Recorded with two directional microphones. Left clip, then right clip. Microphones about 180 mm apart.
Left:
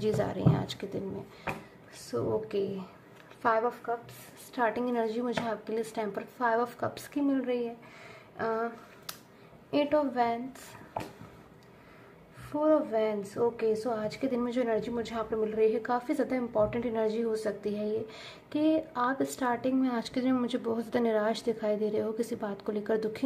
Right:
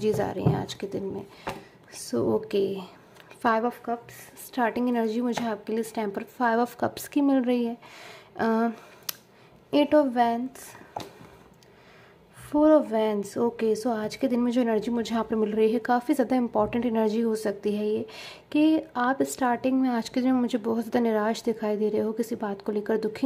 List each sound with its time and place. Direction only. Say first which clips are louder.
0.0 s speech: right 4 dB; 30° right (ahead or behind)
2.0 s a woman's voice: right 5 dB; 45° right (ahead or behind)
12.4 s a woman's voice: right 6 dB; 45° right (ahead or behind); by 23.2 s 30° right (ahead or behind)